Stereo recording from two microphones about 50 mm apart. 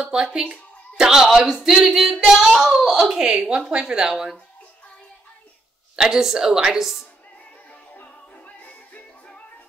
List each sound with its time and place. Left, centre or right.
0.0 s speech: centre
5.9 s speech: centre
7.9 s music: left